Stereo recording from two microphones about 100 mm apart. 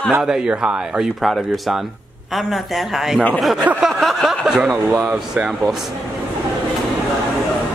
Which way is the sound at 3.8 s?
Centre (ahead or behind).